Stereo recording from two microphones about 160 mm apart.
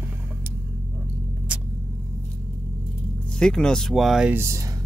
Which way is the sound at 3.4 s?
5° left (ahead or behind).